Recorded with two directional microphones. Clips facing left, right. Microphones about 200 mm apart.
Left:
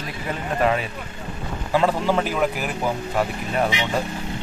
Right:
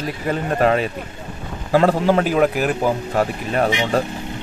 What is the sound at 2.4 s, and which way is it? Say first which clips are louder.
Speech: right 6 dB; 55° right (ahead or behind).